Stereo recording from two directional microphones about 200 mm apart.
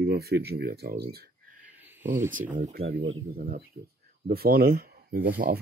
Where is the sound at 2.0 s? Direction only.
40° right (ahead or behind).